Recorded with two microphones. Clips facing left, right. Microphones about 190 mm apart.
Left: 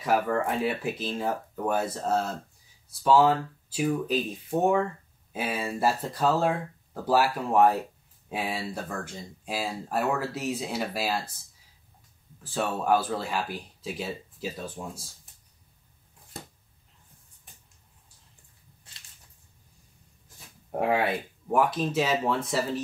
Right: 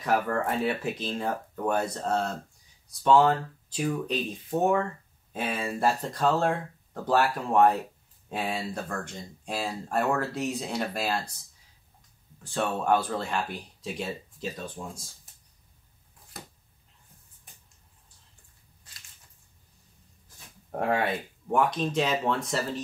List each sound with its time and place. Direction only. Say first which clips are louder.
0.0 s speech: left 1 dB; 5° left (ahead or behind)
12.4 s speech: even; 5° left (ahead or behind)
16.3 s a sound: left 2 dB; 25° left (ahead or behind)
20.7 s speech: left 2 dB; 5° left (ahead or behind)